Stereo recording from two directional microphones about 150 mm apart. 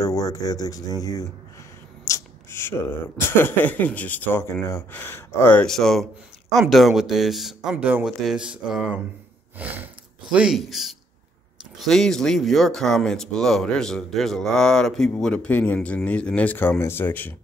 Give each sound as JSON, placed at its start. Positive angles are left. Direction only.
{"t": 0.0, "sound": "speech", "side_deg": 25}
{"t": 9.6, "sound": "a sound", "side_deg": -10}
{"t": 10.3, "sound": "speech", "side_deg": -5}